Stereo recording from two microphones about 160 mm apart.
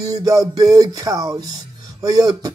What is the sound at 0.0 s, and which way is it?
Speech, 20° right (ahead or behind).